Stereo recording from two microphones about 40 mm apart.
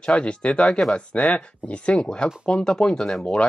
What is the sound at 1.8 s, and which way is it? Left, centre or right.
Speech, left.